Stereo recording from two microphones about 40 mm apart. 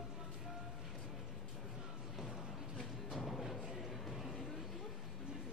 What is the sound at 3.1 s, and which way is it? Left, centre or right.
Music, centre.